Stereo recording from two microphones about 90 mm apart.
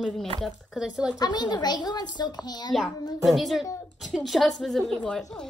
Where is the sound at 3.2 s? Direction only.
Centre (ahead or behind).